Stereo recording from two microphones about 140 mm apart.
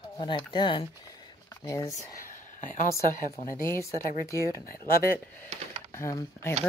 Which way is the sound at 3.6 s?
20° left (ahead or behind).